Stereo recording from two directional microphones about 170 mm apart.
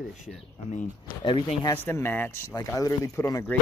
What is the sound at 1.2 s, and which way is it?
Speech, 30° left (ahead or behind).